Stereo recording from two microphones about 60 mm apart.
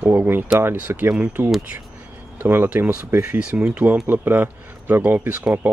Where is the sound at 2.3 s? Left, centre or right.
Right.